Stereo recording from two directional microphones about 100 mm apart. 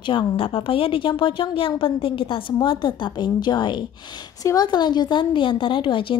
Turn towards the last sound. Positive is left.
turn(degrees=55)  # may be behind; listen again after turning